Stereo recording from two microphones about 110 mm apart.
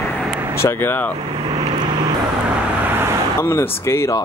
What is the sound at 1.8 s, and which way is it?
Vehicle, 40° right (ahead or behind).